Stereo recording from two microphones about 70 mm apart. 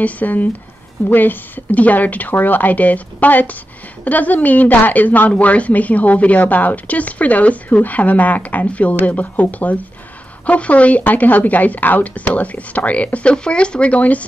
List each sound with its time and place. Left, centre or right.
0.0 s a woman's voice: left